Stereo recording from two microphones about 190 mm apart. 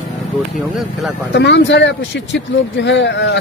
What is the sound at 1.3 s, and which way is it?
Speech, 65° left (ahead or behind).